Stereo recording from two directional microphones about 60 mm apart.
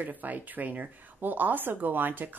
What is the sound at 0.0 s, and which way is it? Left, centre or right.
A woman's voice, right.